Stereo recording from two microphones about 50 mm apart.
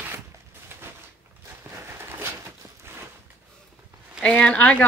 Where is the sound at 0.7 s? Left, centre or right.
Right.